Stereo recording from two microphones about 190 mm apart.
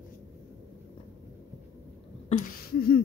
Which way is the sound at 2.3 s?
45° left (ahead or behind).